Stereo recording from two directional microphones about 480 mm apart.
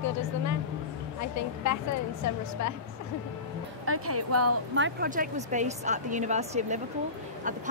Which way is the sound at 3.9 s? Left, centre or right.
Right.